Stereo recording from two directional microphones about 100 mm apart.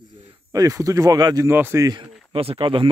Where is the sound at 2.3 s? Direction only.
65° right (ahead or behind).